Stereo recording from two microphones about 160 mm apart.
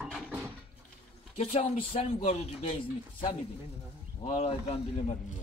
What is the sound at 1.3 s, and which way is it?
Speech, 40° left (ahead or behind).